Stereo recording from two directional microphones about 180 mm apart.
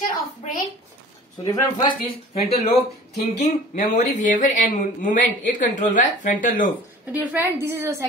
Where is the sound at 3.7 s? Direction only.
45° left (ahead or behind).